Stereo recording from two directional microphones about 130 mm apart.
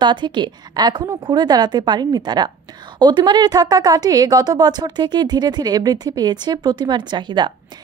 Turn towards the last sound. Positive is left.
turn(degrees=-35)  # may be behind; listen again after turning